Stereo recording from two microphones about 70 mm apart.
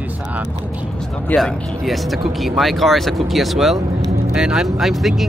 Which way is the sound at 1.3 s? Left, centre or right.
Centre.